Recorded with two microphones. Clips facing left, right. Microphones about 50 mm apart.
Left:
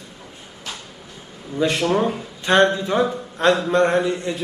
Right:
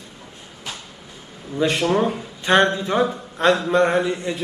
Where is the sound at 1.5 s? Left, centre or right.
Centre.